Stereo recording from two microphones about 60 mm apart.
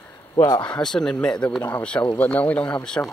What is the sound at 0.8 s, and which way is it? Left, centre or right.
Speech, centre.